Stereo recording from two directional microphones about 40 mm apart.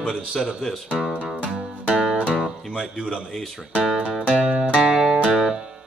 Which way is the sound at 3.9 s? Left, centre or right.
Right.